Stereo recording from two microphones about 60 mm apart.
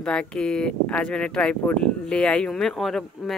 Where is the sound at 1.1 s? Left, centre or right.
Centre.